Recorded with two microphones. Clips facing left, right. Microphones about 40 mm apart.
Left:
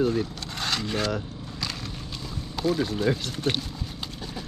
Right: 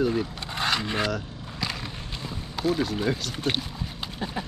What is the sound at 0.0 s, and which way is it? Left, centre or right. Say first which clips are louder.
Speech: even; centre.